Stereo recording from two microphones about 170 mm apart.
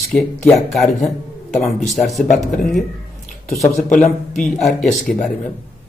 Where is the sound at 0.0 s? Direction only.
10° left (ahead or behind).